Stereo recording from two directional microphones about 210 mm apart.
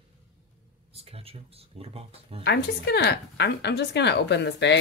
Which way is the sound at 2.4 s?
55° left (ahead or behind).